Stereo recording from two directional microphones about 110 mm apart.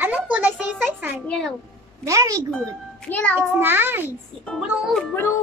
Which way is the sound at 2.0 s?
30° right (ahead or behind).